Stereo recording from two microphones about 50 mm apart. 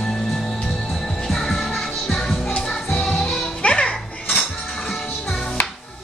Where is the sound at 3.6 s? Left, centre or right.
Left.